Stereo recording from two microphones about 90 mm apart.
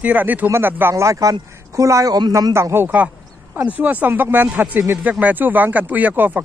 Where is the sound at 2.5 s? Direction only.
30° right (ahead or behind).